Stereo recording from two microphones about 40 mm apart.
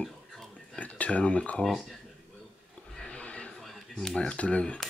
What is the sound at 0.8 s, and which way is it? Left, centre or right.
Speech, left.